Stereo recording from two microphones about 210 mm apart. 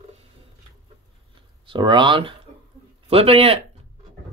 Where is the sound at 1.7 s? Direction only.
20° right (ahead or behind).